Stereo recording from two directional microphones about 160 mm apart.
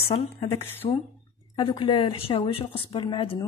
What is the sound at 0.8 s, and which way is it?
Speech, 45° left (ahead or behind).